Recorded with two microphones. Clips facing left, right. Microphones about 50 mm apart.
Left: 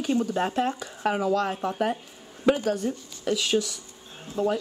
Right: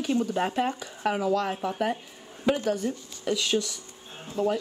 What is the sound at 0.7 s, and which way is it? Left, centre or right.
Speech, centre.